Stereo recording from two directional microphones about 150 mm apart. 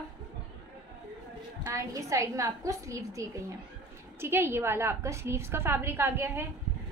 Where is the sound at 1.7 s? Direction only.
20° right (ahead or behind).